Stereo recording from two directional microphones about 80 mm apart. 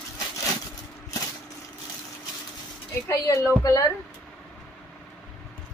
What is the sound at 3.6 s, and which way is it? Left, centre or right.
Speech, left.